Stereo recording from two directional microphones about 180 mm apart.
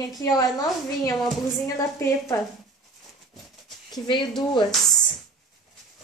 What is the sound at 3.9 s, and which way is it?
Speech, 25° left (ahead or behind).